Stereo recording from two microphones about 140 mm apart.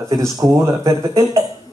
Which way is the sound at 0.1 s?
25° right (ahead or behind).